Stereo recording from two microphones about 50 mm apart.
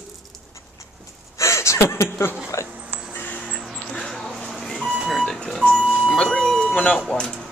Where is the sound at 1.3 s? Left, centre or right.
Left.